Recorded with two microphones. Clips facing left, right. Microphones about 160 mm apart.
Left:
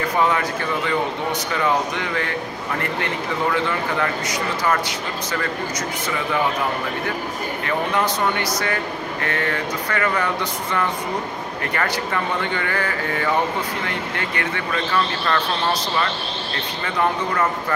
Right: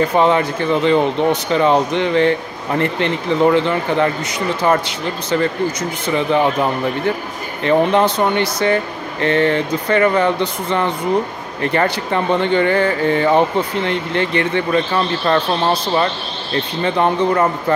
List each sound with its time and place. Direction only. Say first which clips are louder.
0.2 s speech: right 6 dB; 25° right (ahead or behind)
7.6 s speech: right 9 dB; 25° right (ahead or behind)